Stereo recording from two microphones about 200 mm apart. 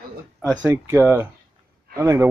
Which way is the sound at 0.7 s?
15° right (ahead or behind).